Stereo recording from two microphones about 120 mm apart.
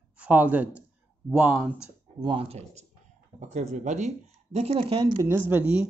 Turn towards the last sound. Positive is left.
turn(degrees=-20)  # may be behind; listen again after turning